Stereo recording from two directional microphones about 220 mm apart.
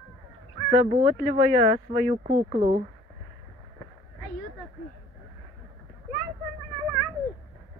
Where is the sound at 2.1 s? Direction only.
30° right (ahead or behind).